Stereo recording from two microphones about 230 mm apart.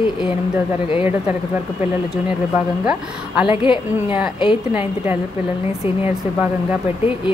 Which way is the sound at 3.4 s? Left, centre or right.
Left.